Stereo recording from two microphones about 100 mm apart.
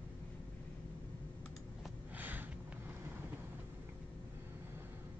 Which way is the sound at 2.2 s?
15° right (ahead or behind).